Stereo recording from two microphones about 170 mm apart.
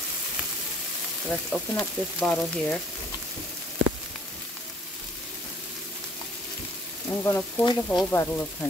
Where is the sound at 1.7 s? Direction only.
5° left (ahead or behind).